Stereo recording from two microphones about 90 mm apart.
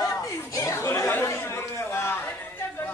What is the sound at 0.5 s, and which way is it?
Chatter, 35° left (ahead or behind).